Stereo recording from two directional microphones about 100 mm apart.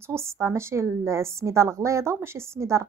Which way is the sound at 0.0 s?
25° right (ahead or behind).